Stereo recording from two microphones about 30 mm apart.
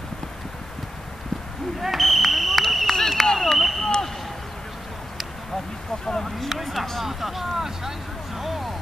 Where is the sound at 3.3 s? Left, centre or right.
Centre.